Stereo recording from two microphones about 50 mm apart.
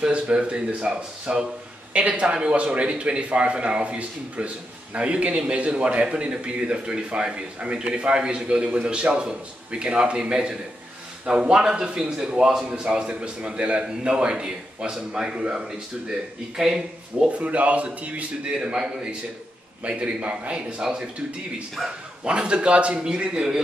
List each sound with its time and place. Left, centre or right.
0.0 s a man's voice: right
17.4 s speech: right
22.2 s a man's voice: right